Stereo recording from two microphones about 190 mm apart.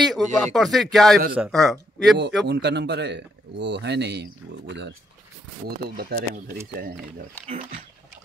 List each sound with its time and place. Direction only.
0.0 s speech: centre (ahead or behind)
2.4 s speech: 65° right (ahead or behind)
5.9 s speech: 50° right (ahead or behind)